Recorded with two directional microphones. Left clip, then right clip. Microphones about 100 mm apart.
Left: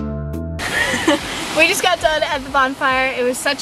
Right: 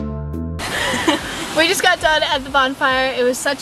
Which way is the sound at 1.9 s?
10° right (ahead or behind).